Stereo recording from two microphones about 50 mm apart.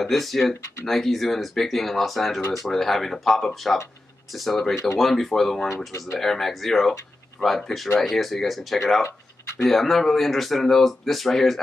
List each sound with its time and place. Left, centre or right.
0.0 s speech: centre
5.9 s speech: left
6.1 s speech: centre